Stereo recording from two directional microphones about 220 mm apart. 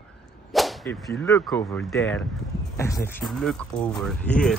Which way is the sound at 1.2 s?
10° left (ahead or behind).